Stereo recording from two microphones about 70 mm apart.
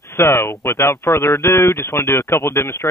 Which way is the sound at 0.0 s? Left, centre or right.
Left.